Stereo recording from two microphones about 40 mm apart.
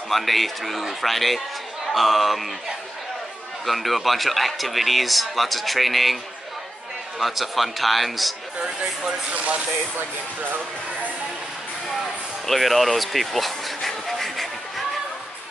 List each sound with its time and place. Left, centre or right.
0.1 s speech: centre
3.6 s speech: centre
7.2 s speech: centre
9.3 s speech: right
9.9 s speech: right
12.0 s speech: centre
13.7 s a sound: centre